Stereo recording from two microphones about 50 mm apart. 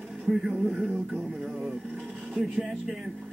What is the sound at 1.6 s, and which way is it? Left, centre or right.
Music, centre.